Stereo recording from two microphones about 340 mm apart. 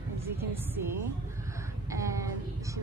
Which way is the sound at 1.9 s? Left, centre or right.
Centre.